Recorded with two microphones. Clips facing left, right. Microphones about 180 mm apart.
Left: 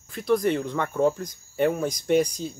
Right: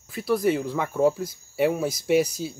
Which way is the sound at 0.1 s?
5° right (ahead or behind).